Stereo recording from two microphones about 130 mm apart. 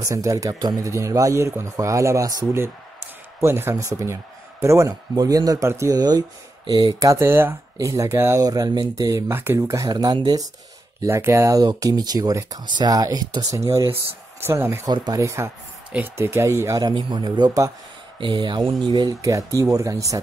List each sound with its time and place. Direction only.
0.0 s a man's voice: 25° right (ahead or behind)
16.8 s a man's voice: 35° right (ahead or behind)